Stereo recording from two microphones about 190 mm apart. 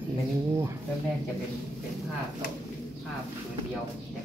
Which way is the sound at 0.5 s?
15° right (ahead or behind).